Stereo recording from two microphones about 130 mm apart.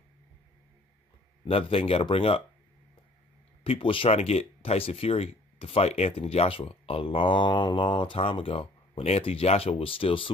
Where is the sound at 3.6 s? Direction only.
45° left (ahead or behind).